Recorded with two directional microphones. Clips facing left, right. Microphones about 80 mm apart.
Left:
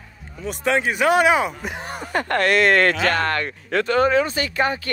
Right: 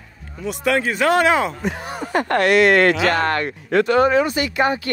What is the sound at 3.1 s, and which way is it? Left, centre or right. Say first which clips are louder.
Speech: right 2 dB; right.